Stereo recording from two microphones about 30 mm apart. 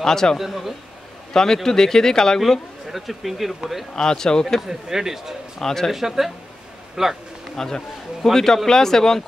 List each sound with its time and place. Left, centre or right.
0.0 s speech: centre
0.5 s speech: centre
1.3 s speech: centre
2.9 s speech: centre
3.9 s speech: left
4.6 s speech: centre
5.6 s speech: centre
5.9 s speech: centre
7.5 s speech: centre